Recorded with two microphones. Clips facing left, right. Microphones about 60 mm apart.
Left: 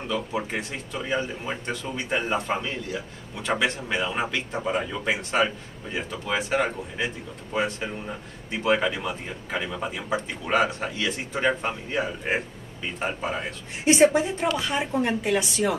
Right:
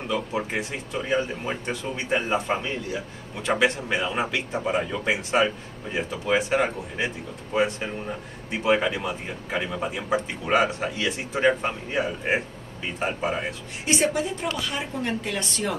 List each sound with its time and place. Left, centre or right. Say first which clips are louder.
0.1 s speech: right 1 dB; centre
13.8 s a woman's voice: left 5 dB; left; by 15.7 s centre